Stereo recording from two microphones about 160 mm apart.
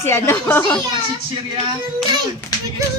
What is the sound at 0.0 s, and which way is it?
Speech, 15° left (ahead or behind).